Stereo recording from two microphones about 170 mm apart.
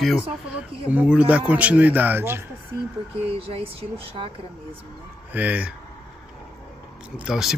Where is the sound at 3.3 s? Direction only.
35° right (ahead or behind).